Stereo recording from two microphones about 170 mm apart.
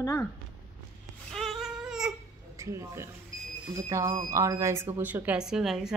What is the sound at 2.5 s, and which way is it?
Speech, 20° right (ahead or behind).